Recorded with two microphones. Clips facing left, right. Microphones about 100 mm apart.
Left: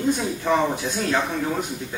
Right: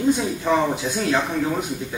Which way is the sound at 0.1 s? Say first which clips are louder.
Right 1 dB; 10° right (ahead or behind).